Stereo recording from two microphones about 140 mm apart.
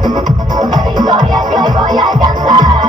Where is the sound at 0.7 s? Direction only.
30° right (ahead or behind).